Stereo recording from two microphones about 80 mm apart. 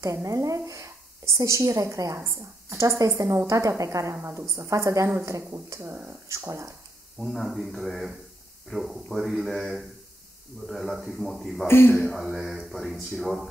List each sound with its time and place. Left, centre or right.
0.0 s speech: right
4.1 s speech: right
7.2 s speech: centre
11.6 s speech: left
12.0 s speech: centre